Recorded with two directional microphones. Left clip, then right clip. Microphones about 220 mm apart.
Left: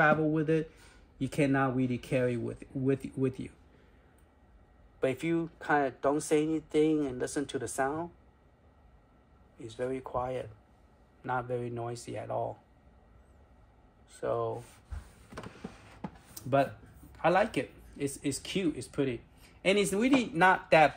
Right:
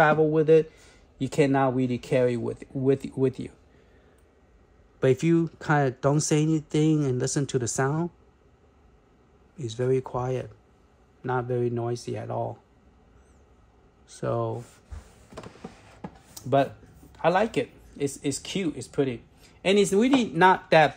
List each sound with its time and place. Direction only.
0.0 s speech: 45° right (ahead or behind)
5.0 s speech: 45° right (ahead or behind)
9.6 s speech: 45° right (ahead or behind)
14.0 s speech: 50° right (ahead or behind)
15.2 s a sound: 5° right (ahead or behind)
17.1 s speech: 50° right (ahead or behind)